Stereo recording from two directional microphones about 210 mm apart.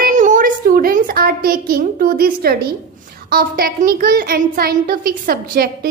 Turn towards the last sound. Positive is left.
turn(degrees=-45)  # may be behind; listen again after turning